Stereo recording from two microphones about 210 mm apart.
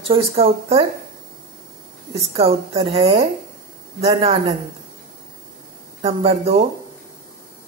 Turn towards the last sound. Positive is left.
turn(degrees=-25)  # may be behind; listen again after turning